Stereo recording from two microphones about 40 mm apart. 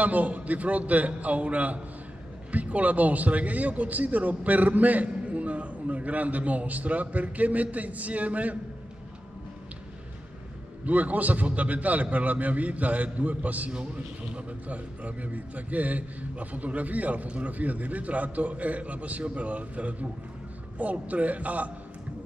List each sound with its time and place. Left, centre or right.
0.0 s a man's voice: right
10.9 s a man's voice: right